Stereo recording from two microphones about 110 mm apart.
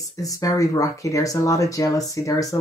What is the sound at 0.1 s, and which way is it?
Speech, 30° left (ahead or behind).